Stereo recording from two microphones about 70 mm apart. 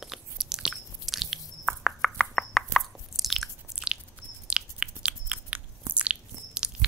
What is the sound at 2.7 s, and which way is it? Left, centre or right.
Chewing, centre.